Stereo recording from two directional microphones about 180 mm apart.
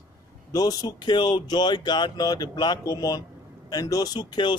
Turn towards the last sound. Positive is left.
turn(degrees=25)  # may be behind; listen again after turning